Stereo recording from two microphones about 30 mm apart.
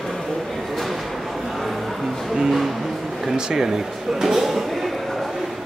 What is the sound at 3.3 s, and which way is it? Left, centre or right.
Speech, right.